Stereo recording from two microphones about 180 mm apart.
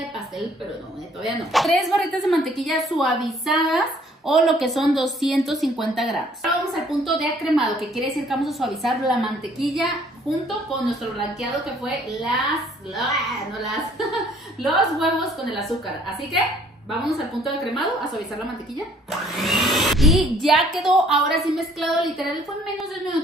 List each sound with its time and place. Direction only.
1.2 s speech: centre (ahead or behind)
12.1 s speech: centre (ahead or behind)
17.0 s speech: centre (ahead or behind)